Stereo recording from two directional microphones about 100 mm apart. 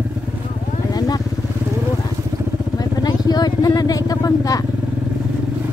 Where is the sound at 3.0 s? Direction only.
40° left (ahead or behind).